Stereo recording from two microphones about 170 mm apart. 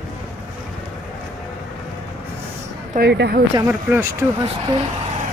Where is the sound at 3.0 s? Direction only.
75° right (ahead or behind).